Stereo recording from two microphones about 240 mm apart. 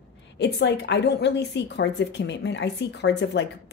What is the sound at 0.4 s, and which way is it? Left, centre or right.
A woman's voice, left.